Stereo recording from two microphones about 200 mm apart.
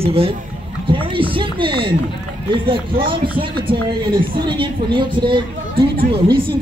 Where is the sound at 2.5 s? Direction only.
25° right (ahead or behind).